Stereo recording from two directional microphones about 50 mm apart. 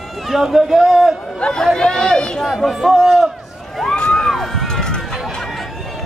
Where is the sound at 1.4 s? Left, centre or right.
Centre.